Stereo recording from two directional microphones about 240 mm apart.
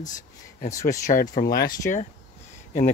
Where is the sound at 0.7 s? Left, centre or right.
Centre.